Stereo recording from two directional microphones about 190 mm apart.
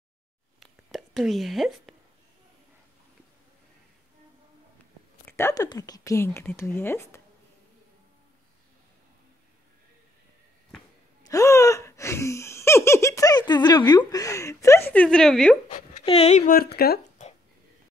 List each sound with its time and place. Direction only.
0.6 s whispering: centre (ahead or behind)
5.2 s a woman's voice: 15° left (ahead or behind)
11.2 s laughter: 15° left (ahead or behind)
15.7 s speech: 35° left (ahead or behind)
16.5 s speech: 55° left (ahead or behind)